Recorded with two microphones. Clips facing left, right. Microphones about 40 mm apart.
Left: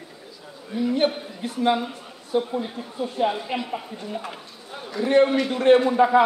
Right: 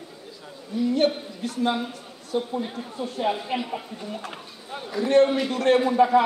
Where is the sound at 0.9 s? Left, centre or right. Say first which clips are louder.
Even; left.